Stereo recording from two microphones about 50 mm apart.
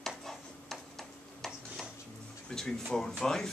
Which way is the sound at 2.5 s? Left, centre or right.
Centre.